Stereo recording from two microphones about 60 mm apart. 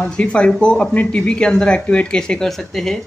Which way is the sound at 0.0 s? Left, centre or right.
Centre.